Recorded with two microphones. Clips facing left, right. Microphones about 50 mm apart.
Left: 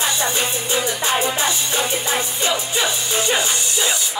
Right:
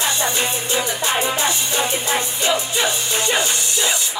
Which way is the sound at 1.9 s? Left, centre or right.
Right.